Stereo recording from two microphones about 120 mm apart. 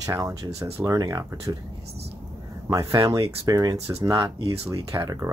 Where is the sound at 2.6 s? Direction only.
25° right (ahead or behind).